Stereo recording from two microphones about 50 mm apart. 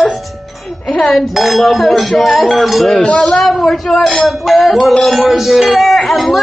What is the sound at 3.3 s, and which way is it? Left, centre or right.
A woman's voice, centre.